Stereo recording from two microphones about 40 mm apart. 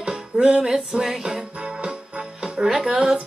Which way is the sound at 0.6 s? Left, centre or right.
Centre.